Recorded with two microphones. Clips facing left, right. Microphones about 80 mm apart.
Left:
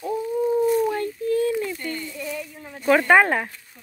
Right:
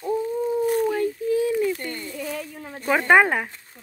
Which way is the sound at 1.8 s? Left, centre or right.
Right.